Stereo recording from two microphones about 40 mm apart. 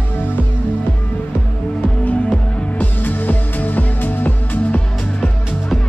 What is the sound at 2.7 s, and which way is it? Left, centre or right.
Music, left.